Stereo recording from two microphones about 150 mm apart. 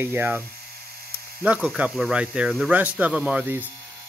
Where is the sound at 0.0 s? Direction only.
15° right (ahead or behind).